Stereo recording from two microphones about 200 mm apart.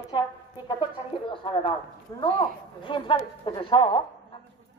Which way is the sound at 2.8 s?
25° left (ahead or behind).